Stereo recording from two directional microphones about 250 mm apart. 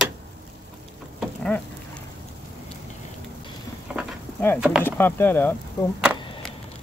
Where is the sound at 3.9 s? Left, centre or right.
Centre.